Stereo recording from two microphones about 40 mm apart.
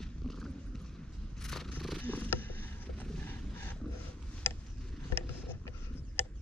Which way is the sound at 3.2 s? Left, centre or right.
Left.